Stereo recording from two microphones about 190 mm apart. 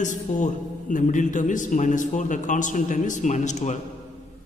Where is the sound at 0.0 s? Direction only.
40° left (ahead or behind).